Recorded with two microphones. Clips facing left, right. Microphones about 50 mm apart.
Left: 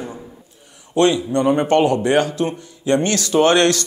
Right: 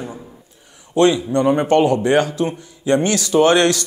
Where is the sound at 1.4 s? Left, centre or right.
Centre.